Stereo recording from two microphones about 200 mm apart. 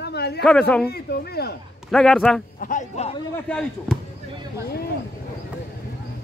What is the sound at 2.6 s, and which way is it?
Speech, 40° left (ahead or behind).